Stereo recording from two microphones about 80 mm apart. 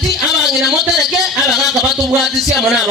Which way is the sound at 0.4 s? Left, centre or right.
Centre.